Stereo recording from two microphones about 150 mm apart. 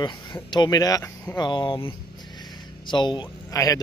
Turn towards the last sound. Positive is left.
turn(degrees=20)  # may be behind; listen again after turning